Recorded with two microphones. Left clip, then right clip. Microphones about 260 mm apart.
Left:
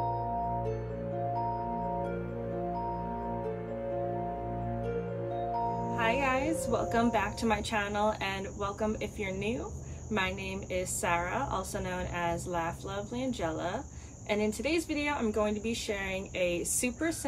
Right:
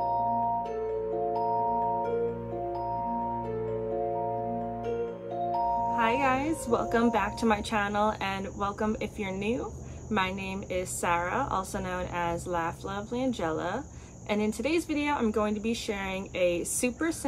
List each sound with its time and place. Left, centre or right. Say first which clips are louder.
5.9 s speech: even; centre